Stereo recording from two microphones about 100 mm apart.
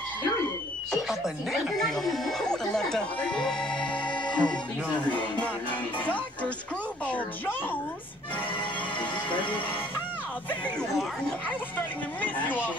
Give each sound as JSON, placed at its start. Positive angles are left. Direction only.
{"t": 0.9, "sound": "speech", "side_deg": 0}
{"t": 4.4, "sound": "music", "side_deg": 10}
{"t": 12.2, "sound": "music", "side_deg": 15}